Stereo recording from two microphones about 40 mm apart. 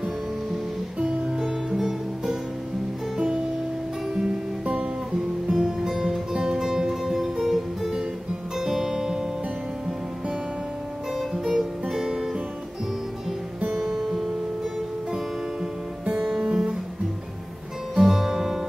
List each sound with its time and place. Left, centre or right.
0.9 s music: right
1.4 s music: centre
5.5 s music: centre
6.3 s music: centre
11.1 s music: centre
13.7 s music: centre
16.2 s guitar: centre
17.9 s music: centre